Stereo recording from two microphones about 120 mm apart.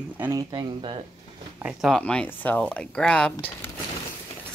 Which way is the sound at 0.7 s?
45° right (ahead or behind).